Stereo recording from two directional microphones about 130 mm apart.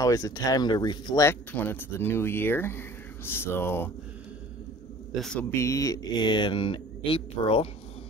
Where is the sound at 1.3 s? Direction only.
15° left (ahead or behind).